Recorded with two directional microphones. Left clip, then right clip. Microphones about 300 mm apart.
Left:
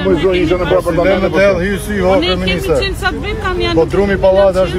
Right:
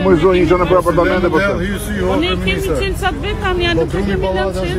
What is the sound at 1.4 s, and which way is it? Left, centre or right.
Speech, left.